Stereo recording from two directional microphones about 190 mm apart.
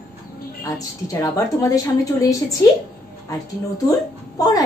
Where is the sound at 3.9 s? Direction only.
20° left (ahead or behind).